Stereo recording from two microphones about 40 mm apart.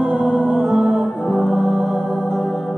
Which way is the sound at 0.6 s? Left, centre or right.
Centre.